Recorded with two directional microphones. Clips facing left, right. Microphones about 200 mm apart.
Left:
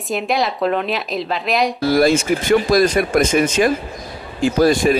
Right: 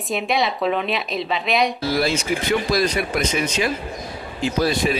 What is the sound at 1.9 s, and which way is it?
Speech, 50° left (ahead or behind).